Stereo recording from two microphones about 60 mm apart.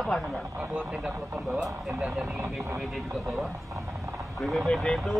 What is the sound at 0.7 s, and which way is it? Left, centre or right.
Speech, centre.